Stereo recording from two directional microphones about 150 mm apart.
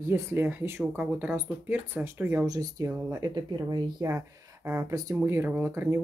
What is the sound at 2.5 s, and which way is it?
Speech, 25° right (ahead or behind).